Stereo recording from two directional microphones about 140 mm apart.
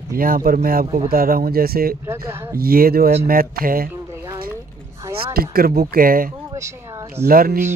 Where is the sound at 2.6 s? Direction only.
90° right.